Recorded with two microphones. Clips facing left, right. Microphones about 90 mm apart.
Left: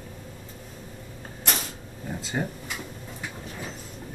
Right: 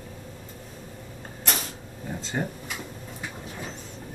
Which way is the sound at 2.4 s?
Centre (ahead or behind).